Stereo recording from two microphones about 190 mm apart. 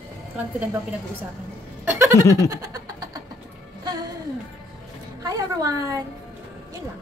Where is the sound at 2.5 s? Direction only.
20° right (ahead or behind).